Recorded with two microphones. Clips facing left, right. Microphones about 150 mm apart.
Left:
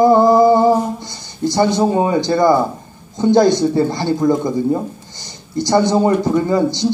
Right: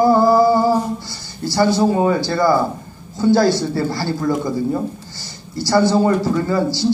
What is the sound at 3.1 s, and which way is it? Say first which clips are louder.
A man's voice: left 2 dB; 20° left (ahead or behind).